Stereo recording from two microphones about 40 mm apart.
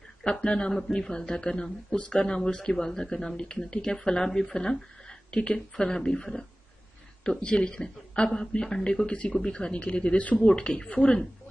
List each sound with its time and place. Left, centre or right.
0.2 s a man's voice: left
7.4 s a man's voice: left
9.0 s speech: left
9.3 s a man's voice: centre; by 10.5 s left
10.5 s a man's voice: left